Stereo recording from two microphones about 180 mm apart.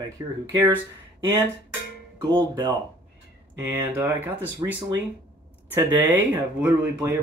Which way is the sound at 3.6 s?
10° right (ahead or behind).